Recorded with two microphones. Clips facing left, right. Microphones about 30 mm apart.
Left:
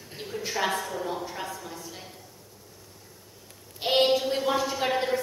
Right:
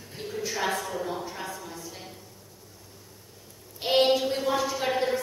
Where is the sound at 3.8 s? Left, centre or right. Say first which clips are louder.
Even; centre.